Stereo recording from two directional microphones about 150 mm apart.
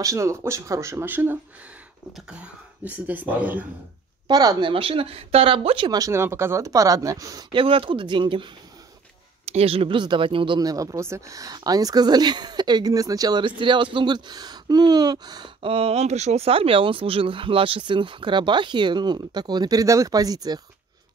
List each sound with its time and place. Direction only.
0.0 s speech: 20° right (ahead or behind)
4.3 s speech: 25° right (ahead or behind)
5.9 s speech: 25° right (ahead or behind)
7.5 s speech: 35° right (ahead or behind)
9.5 s speech: 40° right (ahead or behind); by 20.6 s 25° right (ahead or behind)